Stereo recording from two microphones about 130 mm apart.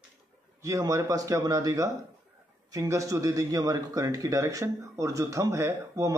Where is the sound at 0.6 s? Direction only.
25° right (ahead or behind).